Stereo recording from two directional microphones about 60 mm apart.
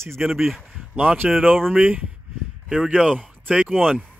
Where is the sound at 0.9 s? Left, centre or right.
Right.